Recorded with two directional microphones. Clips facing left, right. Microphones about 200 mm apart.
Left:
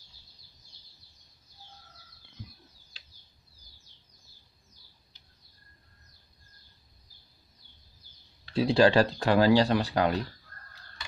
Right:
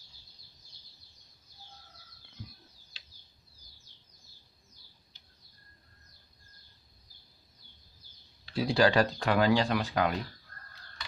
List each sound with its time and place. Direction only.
8.5 s speech: 25° left (ahead or behind)